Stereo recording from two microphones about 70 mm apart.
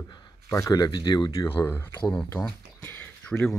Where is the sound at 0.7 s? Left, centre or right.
Left.